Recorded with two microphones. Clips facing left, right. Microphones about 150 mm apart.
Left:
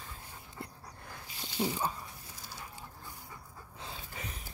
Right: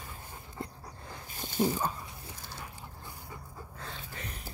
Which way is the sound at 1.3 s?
45° right (ahead or behind).